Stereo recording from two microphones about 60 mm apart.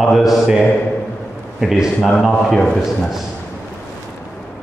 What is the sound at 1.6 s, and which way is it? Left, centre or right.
Speech, centre.